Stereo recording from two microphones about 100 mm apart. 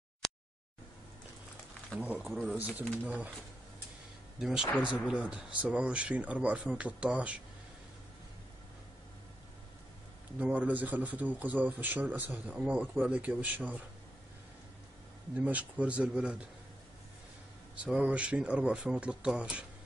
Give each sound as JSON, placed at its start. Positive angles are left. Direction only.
{"t": 0.2, "sound": "a sound", "side_deg": 5}
{"t": 2.0, "sound": "speech", "side_deg": -15}
{"t": 2.8, "sound": "speech", "side_deg": 15}
{"t": 3.1, "sound": "speech", "side_deg": -15}
{"t": 4.4, "sound": "speech", "side_deg": -5}
{"t": 10.4, "sound": "speech", "side_deg": -15}
{"t": 15.3, "sound": "speech", "side_deg": -15}
{"t": 17.8, "sound": "speech", "side_deg": -10}